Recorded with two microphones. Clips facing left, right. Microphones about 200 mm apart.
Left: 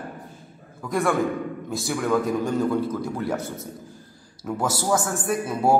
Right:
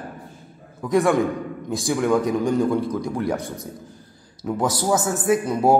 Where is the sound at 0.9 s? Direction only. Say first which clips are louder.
Right 4 dB; 20° right (ahead or behind).